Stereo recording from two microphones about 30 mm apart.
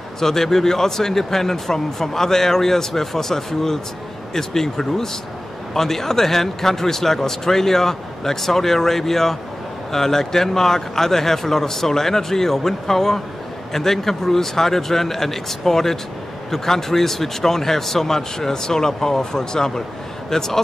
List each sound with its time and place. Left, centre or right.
0.2 s speech: centre